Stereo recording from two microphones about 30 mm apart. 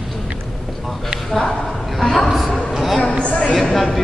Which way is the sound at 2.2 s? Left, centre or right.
Centre.